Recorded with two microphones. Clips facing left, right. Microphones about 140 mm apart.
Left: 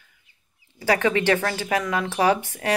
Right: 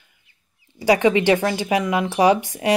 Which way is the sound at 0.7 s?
15° right (ahead or behind).